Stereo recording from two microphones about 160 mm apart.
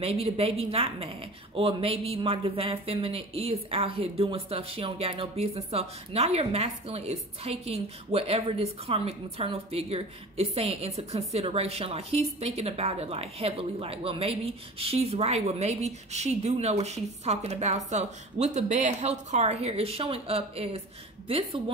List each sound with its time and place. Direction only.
0.0 s speech: 40° right (ahead or behind)